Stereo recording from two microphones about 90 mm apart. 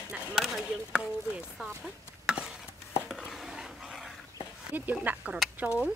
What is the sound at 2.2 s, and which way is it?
Dog, 10° right (ahead or behind).